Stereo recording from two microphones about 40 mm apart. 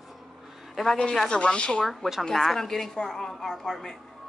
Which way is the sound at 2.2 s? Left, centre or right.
Centre.